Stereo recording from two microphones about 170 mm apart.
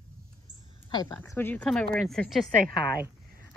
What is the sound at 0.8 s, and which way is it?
A woman's voice, 25° left (ahead or behind).